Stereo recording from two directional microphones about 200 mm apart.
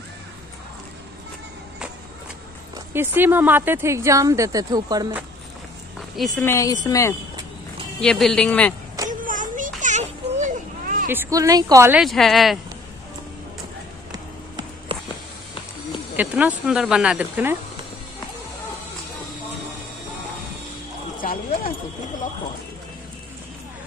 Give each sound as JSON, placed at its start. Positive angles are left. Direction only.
{"t": 2.9, "sound": "speech", "side_deg": -10}
{"t": 6.1, "sound": "a woman's voice", "side_deg": 0}
{"t": 6.4, "sound": "a woman's voice", "side_deg": 15}
{"t": 8.0, "sound": "speech", "side_deg": 0}
{"t": 9.2, "sound": "children playing", "side_deg": -40}
{"t": 11.1, "sound": "speech", "side_deg": -15}
{"t": 12.0, "sound": "speech", "side_deg": 0}
{"t": 14.1, "sound": "music", "side_deg": -20}
{"t": 16.2, "sound": "speech", "side_deg": -10}
{"t": 21.2, "sound": "clip-clop", "side_deg": 45}